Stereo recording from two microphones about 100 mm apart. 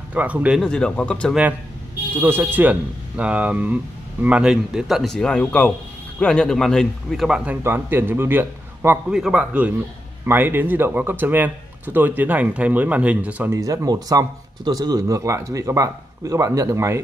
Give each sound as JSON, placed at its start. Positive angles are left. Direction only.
{"t": 0.1, "sound": "a man's voice", "side_deg": -15}
{"t": 0.6, "sound": "speech", "side_deg": 10}
{"t": 2.1, "sound": "a man's voice", "side_deg": -25}
{"t": 5.1, "sound": "a man's voice", "side_deg": 10}
{"t": 7.6, "sound": "a man's voice", "side_deg": -20}
{"t": 9.1, "sound": "a man's voice", "side_deg": -5}
{"t": 13.5, "sound": "speech", "side_deg": -30}